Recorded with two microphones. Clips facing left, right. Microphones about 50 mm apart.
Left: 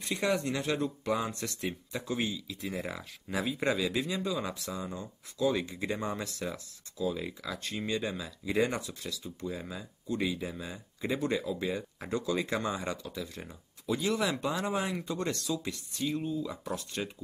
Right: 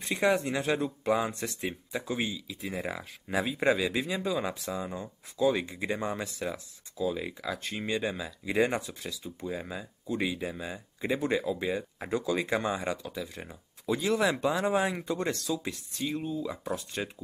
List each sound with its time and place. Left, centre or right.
0.1 s speech: right
16.4 s speech: centre